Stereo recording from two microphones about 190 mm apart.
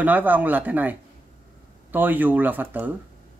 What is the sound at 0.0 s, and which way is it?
Speech, 10° right (ahead or behind).